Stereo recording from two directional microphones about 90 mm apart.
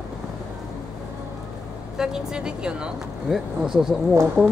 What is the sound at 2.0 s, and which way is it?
Speech, 5° right (ahead or behind).